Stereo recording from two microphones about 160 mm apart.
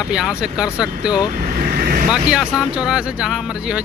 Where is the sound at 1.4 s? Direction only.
65° right (ahead or behind).